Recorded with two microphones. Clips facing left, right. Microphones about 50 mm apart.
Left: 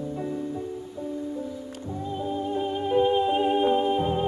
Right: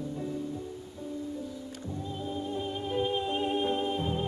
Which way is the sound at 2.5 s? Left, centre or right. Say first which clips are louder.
Left 9 dB; left.